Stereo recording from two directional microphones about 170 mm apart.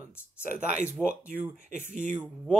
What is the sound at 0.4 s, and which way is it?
Speech, 50° right (ahead or behind).